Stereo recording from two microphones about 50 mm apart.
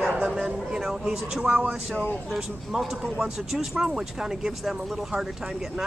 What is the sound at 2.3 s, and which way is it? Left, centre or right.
Speech, centre.